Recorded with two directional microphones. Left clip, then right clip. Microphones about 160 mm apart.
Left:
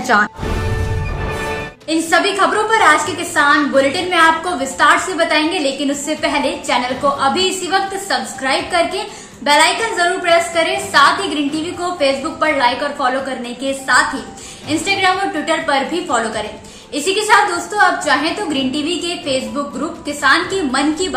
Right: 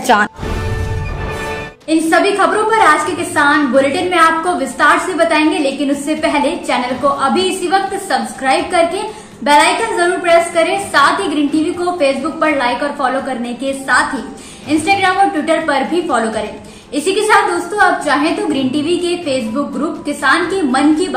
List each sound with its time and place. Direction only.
0.0 s speech: 15° right (ahead or behind)
1.9 s a woman's voice: 5° left (ahead or behind)